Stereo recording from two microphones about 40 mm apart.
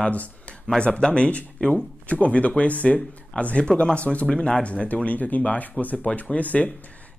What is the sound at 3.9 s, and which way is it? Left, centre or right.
Speech, left.